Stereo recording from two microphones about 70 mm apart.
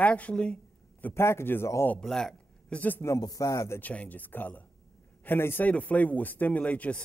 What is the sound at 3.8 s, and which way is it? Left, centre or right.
Speech, left.